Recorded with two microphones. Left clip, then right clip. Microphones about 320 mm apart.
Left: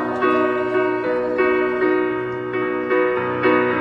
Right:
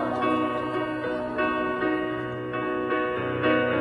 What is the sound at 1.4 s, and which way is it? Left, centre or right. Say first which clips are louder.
Music: left 6 dB; left.